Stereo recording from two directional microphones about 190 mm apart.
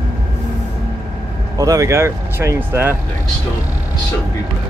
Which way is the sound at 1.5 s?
20° right (ahead or behind).